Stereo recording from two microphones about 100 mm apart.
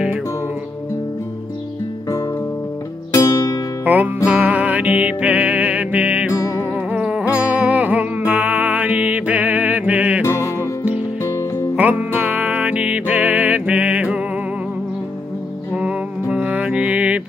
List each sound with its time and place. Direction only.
3.1 s music: 35° left (ahead or behind)
3.8 s music: 15° right (ahead or behind)
10.2 s music: 30° left (ahead or behind)
11.7 s music: 15° right (ahead or behind)
15.7 s music: 10° right (ahead or behind)